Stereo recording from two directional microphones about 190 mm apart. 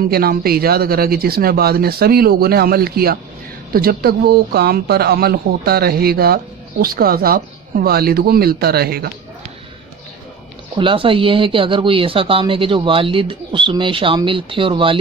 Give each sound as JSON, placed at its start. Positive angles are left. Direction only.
{"t": 0.1, "sound": "speech", "side_deg": -55}
{"t": 10.8, "sound": "speech", "side_deg": -25}